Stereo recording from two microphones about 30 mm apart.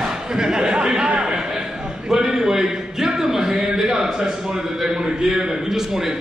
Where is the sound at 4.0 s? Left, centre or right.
Right.